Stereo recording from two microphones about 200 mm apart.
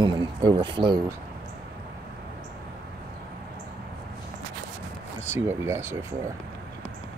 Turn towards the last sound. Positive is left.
turn(degrees=-10)  # may be behind; listen again after turning